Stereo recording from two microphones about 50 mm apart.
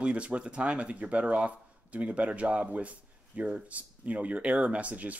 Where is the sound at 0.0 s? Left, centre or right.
Right.